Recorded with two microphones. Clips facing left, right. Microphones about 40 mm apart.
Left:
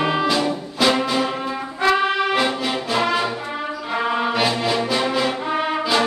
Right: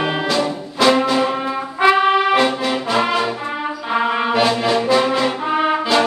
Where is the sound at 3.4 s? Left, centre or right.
Centre.